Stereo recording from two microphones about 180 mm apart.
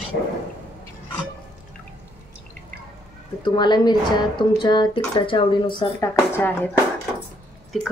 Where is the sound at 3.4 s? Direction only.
25° left (ahead or behind).